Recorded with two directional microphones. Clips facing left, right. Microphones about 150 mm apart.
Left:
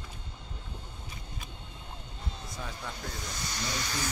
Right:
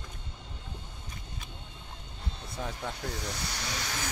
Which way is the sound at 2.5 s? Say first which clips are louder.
Right 6 dB; 55° right (ahead or behind).